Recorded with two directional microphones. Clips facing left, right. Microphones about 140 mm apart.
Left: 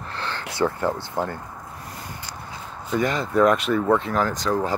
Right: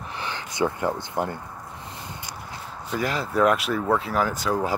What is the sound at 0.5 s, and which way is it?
Speech, 15° right (ahead or behind).